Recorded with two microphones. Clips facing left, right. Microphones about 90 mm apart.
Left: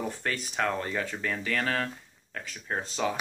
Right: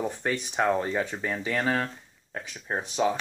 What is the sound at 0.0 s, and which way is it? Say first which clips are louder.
Speech: right 3 dB; 20° right (ahead or behind).